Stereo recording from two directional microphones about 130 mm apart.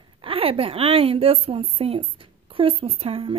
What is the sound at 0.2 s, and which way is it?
Speech, 45° right (ahead or behind).